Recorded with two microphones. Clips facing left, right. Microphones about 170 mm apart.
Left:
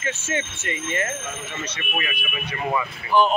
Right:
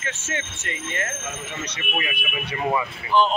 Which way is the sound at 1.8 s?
20° right (ahead or behind).